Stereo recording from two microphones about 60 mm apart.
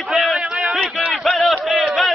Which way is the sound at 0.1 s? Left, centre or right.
Centre.